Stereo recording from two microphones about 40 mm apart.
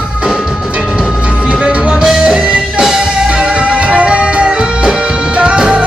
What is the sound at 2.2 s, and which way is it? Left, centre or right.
Music, centre.